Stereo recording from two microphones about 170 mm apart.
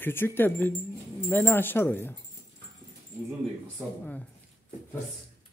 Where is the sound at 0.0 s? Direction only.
15° left (ahead or behind).